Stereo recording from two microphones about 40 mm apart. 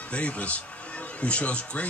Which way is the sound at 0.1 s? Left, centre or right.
Left.